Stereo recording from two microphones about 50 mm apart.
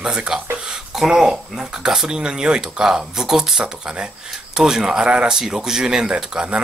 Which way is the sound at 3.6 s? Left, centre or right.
Centre.